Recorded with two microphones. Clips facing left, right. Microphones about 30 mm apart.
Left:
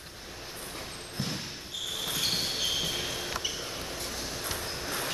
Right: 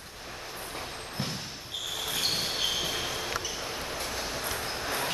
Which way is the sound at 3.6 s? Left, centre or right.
Centre.